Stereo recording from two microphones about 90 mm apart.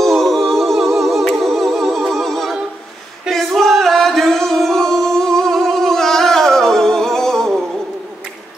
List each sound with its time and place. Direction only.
0.0 s humming: centre (ahead or behind)
1.2 s music: centre (ahead or behind)